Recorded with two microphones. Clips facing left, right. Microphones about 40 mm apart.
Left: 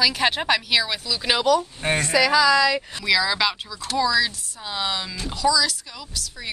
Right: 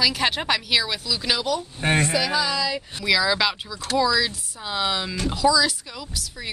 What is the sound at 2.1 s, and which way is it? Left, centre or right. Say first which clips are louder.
Speech: left 6 dB; left.